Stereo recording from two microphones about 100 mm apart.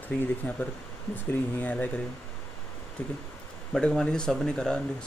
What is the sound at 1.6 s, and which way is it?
Speech, 15° left (ahead or behind).